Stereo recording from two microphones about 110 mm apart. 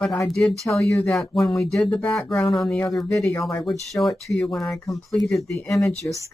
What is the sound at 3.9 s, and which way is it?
Speech, centre (ahead or behind).